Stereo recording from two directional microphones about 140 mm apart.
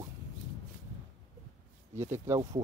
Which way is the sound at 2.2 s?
20° right (ahead or behind).